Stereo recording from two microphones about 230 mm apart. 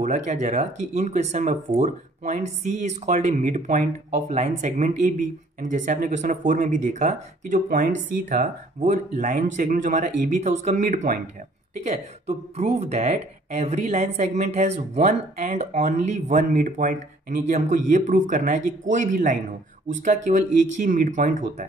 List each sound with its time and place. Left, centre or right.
0.0 s speech: right